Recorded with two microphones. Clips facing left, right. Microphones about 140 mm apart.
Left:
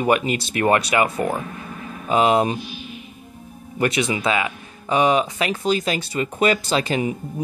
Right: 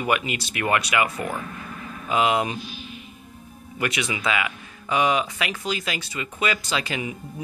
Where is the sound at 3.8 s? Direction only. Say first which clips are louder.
Left 6 dB; 30° left (ahead or behind).